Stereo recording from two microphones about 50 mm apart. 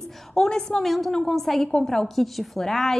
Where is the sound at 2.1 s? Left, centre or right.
Centre.